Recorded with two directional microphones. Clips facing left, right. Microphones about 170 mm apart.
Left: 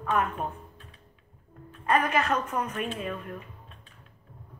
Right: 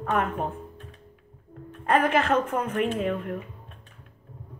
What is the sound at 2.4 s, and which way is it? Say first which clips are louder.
Speech: right 5 dB; 60° right (ahead or behind).